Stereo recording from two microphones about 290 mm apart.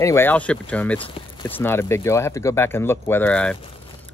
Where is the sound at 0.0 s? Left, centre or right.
Centre.